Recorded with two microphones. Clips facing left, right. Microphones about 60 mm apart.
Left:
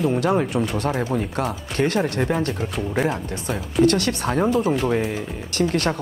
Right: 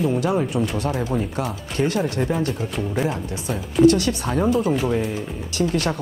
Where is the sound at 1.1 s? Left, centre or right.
Left.